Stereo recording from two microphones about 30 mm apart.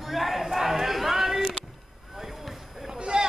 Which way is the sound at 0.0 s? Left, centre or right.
Centre.